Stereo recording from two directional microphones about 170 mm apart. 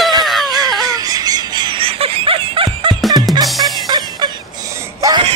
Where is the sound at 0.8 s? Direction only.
20° right (ahead or behind).